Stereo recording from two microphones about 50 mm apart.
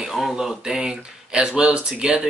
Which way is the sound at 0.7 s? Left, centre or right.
Centre.